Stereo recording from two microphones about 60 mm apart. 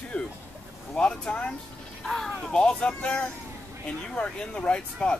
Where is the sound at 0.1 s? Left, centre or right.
Left.